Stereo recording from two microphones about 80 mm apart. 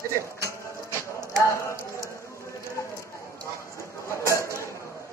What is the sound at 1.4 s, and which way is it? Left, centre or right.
Clip-clop, left.